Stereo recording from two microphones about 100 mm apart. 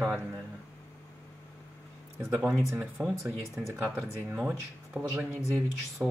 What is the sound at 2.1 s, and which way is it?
Speech, 25° right (ahead or behind).